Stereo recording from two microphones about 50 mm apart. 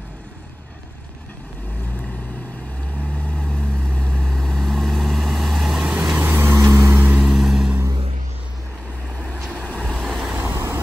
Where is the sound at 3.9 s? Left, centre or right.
Centre.